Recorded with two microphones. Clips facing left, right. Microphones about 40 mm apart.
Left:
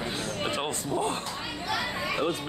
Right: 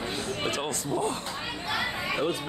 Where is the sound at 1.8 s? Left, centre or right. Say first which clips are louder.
Even; centre.